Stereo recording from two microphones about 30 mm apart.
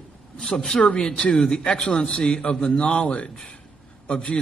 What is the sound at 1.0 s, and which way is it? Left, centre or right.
Speech, left.